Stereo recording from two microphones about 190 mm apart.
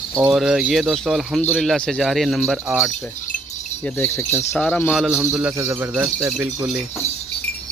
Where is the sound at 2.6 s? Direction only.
10° right (ahead or behind).